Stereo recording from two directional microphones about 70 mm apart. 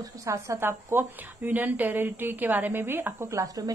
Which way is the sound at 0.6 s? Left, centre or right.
Right.